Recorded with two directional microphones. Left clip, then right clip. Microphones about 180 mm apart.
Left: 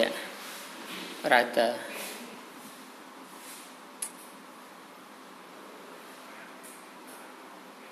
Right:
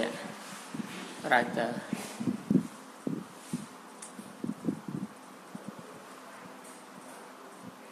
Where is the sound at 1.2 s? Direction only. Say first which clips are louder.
Left 4 dB; 15° left (ahead or behind).